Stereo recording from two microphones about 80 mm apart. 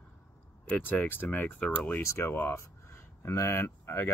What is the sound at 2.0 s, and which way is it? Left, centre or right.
Speech, left.